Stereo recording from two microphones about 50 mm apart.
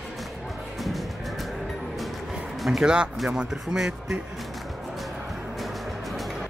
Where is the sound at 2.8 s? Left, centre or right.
Centre.